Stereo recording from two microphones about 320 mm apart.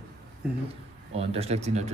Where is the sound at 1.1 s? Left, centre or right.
Centre.